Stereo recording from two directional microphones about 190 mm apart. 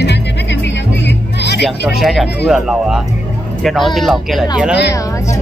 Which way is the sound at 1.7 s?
Centre (ahead or behind).